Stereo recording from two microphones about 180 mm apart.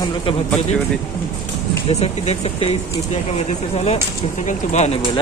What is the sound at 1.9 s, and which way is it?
Speech, 35° left (ahead or behind).